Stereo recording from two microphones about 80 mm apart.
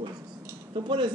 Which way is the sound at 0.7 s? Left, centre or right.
Right.